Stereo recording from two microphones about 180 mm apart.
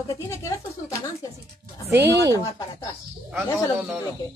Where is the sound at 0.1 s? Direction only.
15° left (ahead or behind).